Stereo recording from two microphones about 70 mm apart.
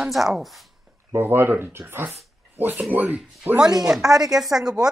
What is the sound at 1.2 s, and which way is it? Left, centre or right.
Speech, right.